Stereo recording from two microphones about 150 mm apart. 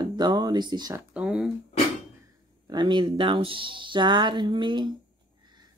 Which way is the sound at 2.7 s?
30° right (ahead or behind).